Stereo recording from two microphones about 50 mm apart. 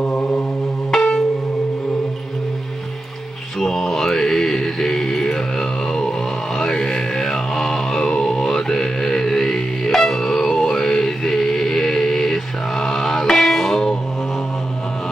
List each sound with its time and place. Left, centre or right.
0.0 s mantra: left
0.9 s music: centre
3.5 s mantra: centre
6.6 s music: centre